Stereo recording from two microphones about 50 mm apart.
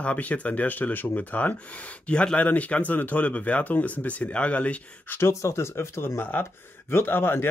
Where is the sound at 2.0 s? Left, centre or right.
Left.